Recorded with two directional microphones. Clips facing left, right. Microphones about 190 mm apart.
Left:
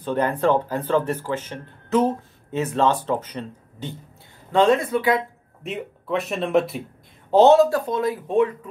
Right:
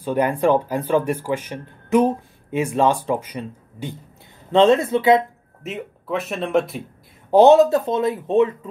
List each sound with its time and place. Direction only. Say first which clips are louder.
0.0 s speech: right 2 dB; 10° right (ahead or behind)
4.5 s speech: right 3 dB; 25° right (ahead or behind)
5.6 s speech: even; centre (ahead or behind)
7.2 s speech: right 2 dB; 15° right (ahead or behind)